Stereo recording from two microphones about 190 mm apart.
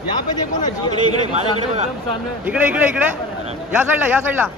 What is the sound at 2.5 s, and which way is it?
Speech, 10° right (ahead or behind).